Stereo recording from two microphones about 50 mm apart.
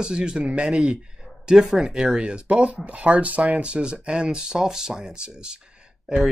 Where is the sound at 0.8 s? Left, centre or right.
Centre.